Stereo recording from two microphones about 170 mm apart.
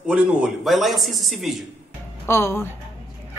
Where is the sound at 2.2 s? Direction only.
15° left (ahead or behind).